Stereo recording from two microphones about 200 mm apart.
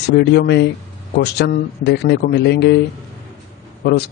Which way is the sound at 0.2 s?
55° left (ahead or behind).